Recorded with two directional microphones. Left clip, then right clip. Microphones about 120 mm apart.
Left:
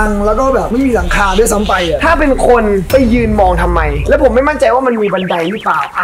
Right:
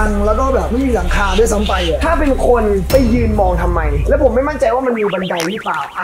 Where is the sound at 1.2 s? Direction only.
90° left.